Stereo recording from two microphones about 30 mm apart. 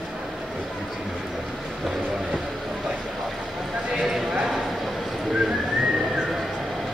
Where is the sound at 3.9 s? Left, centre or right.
Right.